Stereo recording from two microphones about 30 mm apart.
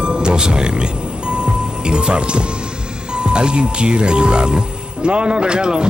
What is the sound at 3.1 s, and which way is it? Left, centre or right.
Speech, right.